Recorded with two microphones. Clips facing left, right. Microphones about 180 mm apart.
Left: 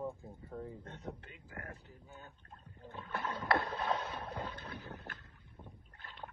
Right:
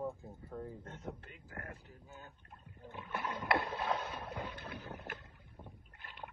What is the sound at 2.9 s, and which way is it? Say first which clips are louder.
Rowboat: even; 15° right (ahead or behind).